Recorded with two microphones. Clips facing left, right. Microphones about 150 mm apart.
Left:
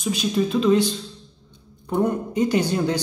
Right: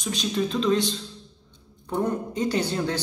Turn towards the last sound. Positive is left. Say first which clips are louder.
# left 4 dB
turn(degrees=10)  # may be behind; listen again after turning